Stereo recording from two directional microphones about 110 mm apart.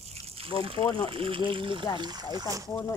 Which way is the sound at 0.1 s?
60° right (ahead or behind).